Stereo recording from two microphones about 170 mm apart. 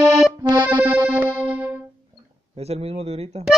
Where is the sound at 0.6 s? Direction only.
10° right (ahead or behind).